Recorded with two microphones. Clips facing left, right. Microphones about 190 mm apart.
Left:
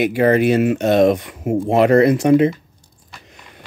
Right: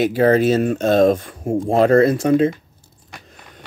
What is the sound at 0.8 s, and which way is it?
Speech, 70° left (ahead or behind).